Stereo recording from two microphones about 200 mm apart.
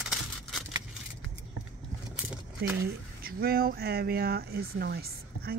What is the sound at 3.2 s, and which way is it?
Speech, 50° right (ahead or behind).